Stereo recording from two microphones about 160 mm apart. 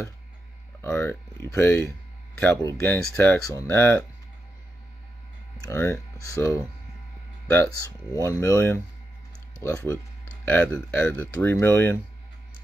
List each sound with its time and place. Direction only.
0.8 s speech: 10° left (ahead or behind)
5.6 s speech: 15° left (ahead or behind)